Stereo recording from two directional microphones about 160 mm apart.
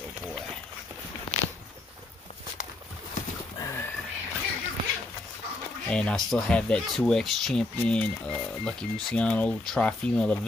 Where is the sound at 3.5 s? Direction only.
15° left (ahead or behind).